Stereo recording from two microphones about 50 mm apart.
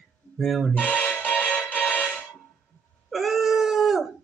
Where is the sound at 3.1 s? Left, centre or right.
Centre.